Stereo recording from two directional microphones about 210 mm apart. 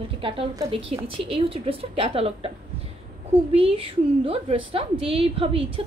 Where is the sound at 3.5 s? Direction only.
25° right (ahead or behind).